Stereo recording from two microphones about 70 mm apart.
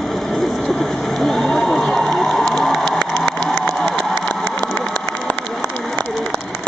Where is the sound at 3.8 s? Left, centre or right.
Left.